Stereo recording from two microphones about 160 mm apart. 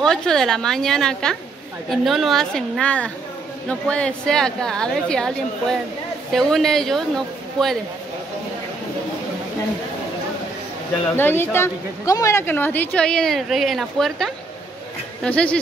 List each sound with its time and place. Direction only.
0.0 s a woman's voice: 5° left (ahead or behind)
11.1 s a woman's voice: 15° left (ahead or behind)